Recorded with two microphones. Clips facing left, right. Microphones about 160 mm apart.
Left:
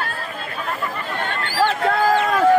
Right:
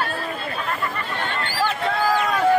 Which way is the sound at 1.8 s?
45° left (ahead or behind).